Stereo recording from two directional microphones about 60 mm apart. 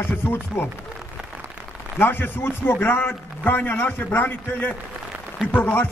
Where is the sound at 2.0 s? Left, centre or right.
Left.